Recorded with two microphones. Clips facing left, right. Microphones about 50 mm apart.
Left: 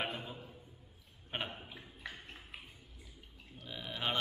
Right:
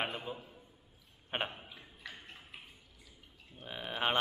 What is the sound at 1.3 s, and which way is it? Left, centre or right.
Mantra, right.